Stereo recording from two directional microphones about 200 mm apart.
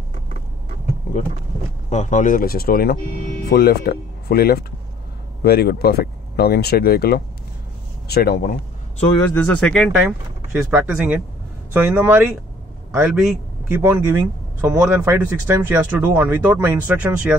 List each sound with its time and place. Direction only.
1.9 s speech: 35° left (ahead or behind)
9.3 s a man's voice: 5° left (ahead or behind)